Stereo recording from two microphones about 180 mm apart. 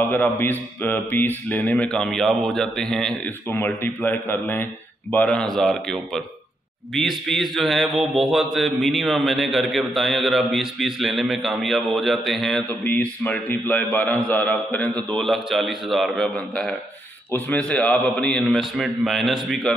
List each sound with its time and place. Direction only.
0.1 s speech: 10° left (ahead or behind)
5.1 s mantra: 5° left (ahead or behind)